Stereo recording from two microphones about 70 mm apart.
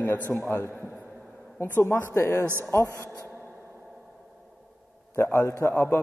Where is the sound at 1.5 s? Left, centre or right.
Left.